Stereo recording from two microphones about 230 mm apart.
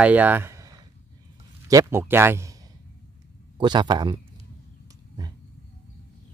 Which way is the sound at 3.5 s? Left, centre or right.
Centre.